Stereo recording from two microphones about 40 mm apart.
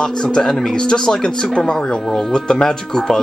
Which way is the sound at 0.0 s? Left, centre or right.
Centre.